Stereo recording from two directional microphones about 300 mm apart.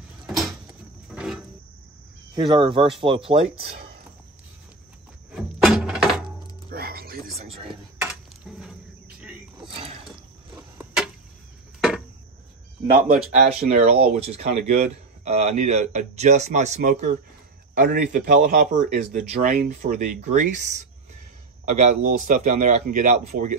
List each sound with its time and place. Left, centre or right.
1.1 s music: centre
2.3 s a man's voice: centre
5.3 s music: centre
6.7 s music: right
7.6 s a sound: centre
10.0 s a sound: centre
12.9 s a man's voice: right